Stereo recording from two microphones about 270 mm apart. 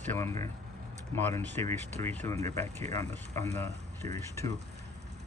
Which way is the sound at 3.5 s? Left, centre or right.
Right.